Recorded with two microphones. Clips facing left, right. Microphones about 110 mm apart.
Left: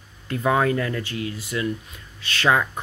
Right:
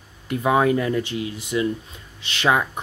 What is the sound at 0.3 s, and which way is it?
Speech, 15° right (ahead or behind).